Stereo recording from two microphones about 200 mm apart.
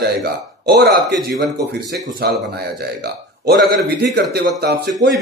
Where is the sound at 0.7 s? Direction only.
55° right (ahead or behind).